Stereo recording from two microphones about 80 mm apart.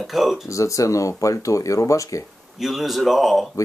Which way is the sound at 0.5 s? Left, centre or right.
Left.